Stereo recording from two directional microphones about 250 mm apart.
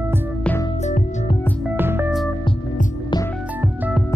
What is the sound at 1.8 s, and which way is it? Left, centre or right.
Music, centre.